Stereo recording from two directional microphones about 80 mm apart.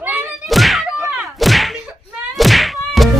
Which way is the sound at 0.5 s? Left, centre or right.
Centre.